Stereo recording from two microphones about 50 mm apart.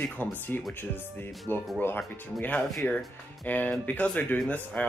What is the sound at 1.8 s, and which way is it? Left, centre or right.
Speech, left.